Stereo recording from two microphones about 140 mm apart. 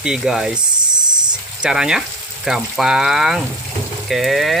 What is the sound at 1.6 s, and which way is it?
Speech, 5° right (ahead or behind).